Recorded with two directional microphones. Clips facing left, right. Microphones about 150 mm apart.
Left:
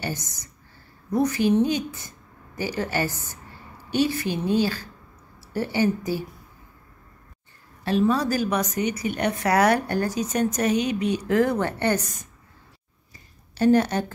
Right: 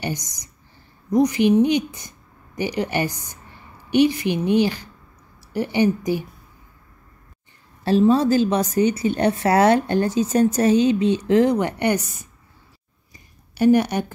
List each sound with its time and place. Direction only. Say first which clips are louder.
0.0 s a woman's voice: right 3 dB; 15° right (ahead or behind)
8.0 s speech: right 6 dB; 25° right (ahead or behind); by 12.3 s 10° right (ahead or behind)
13.1 s a sound: right 1 dB; 15° right (ahead or behind)